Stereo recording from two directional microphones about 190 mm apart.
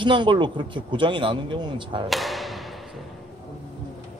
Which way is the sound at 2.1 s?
Centre (ahead or behind).